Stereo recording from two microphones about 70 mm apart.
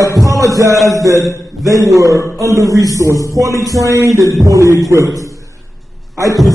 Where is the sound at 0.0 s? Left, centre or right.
Right.